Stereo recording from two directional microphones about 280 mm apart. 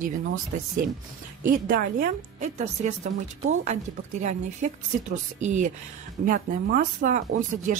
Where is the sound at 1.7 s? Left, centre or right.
Right.